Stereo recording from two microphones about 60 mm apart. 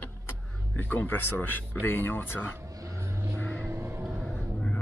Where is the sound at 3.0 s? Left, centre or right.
Right.